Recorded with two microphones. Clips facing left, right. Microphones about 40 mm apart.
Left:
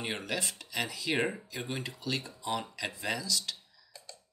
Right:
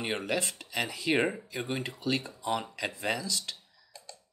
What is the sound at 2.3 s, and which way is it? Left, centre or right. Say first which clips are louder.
Speech: right 3 dB; right.